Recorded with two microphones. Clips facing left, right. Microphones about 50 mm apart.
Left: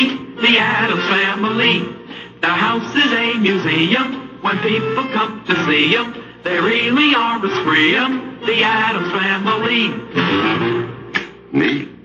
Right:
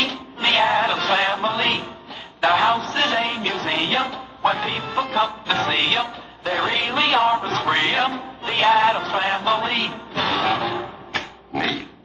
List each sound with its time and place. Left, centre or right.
0.0 s music: left